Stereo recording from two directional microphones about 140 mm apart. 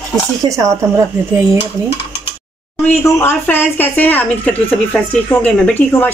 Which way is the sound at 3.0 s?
15° left (ahead or behind).